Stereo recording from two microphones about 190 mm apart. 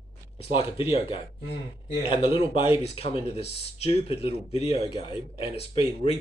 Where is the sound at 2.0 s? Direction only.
30° left (ahead or behind).